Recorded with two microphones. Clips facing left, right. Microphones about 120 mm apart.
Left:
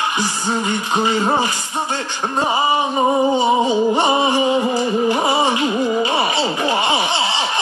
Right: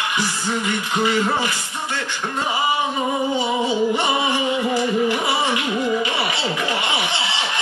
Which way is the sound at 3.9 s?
40° left (ahead or behind).